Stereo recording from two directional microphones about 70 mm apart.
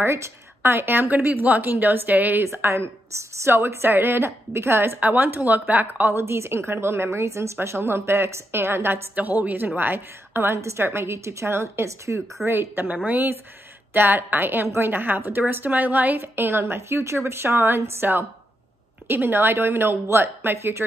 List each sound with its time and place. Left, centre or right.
0.0 s a woman's voice: right
2.4 s a woman's voice: right
5.0 s a woman's voice: right
12.4 s a woman's voice: centre
12.7 s a woman's voice: right